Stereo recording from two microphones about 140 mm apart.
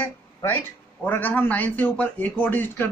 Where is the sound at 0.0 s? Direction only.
20° left (ahead or behind).